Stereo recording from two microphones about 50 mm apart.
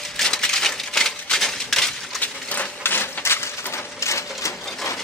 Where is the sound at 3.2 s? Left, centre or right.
Left.